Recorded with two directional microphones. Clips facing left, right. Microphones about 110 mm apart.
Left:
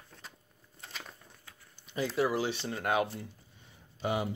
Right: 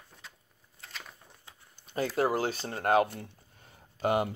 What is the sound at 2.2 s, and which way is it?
Speech, 45° right (ahead or behind).